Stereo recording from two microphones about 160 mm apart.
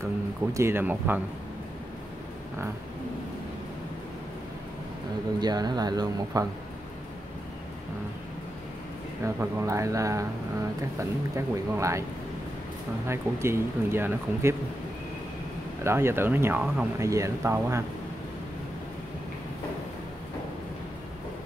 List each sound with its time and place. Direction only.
0.0 s speech: 20° right (ahead or behind)
5.4 s speech: 25° right (ahead or behind)
9.2 s speech: 15° right (ahead or behind)
13.1 s speech: 15° right (ahead or behind)
15.8 s speech: 15° right (ahead or behind)
17.0 s speech: 20° right (ahead or behind)